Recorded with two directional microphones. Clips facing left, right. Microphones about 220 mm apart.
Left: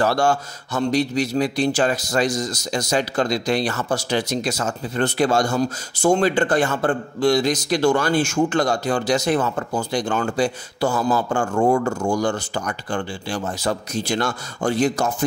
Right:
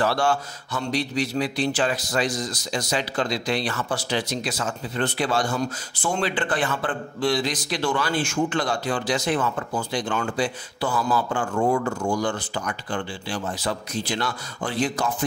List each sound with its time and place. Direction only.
0.0 s speech: 45° left (ahead or behind)